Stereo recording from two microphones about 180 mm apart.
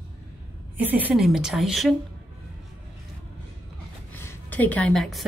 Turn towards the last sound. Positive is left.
turn(degrees=0)  # may be behind; listen again after turning